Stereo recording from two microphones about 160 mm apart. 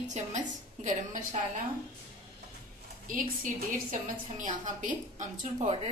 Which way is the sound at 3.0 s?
60° right (ahead or behind).